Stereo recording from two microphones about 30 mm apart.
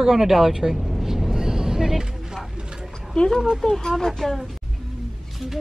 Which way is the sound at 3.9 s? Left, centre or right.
Centre.